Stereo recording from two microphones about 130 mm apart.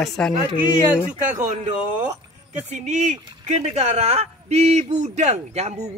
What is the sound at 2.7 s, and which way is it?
Speech, 60° right (ahead or behind).